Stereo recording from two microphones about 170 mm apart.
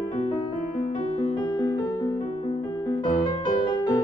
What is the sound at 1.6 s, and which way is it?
Music, 20° left (ahead or behind).